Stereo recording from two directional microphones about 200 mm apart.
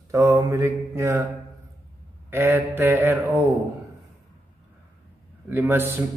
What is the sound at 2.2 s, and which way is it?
Speech, 10° right (ahead or behind).